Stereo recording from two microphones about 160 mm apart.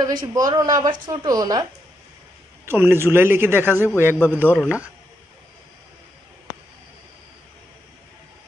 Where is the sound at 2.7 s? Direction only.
15° right (ahead or behind).